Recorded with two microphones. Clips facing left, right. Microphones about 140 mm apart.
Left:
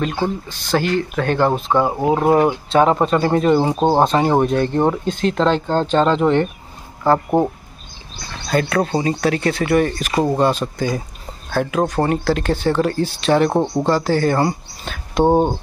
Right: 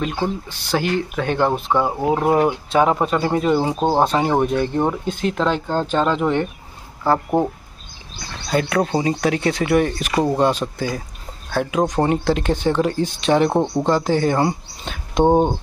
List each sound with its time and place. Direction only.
0.0 s speech: centre (ahead or behind)
0.5 s speech: 10° right (ahead or behind)
1.7 s speech: 10° left (ahead or behind)
2.7 s speech: 10° right (ahead or behind)
8.5 s speech: 10° right (ahead or behind)
10.1 s speech: 10° left (ahead or behind)
10.6 s speech: centre (ahead or behind)
11.9 s speech: 20° right (ahead or behind)
13.5 s speech: 10° left (ahead or behind)
13.8 s speech: 20° right (ahead or behind)
15.2 s speech: 10° left (ahead or behind)